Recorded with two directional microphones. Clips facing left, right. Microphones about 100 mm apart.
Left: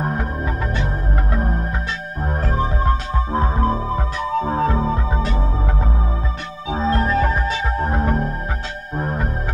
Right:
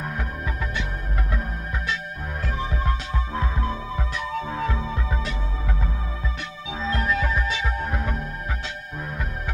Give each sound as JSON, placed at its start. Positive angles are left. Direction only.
{"t": 0.0, "sound": "music", "side_deg": 40}
{"t": 1.3, "sound": "music", "side_deg": 40}
{"t": 6.7, "sound": "music", "side_deg": 40}